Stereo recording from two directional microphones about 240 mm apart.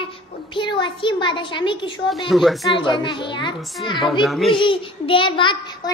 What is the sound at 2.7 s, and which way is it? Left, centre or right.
Speech, centre.